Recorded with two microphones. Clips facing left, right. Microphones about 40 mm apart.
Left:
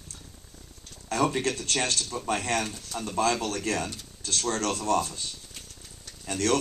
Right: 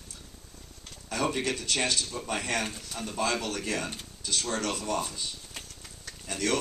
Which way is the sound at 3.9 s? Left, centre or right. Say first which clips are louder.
Even; right.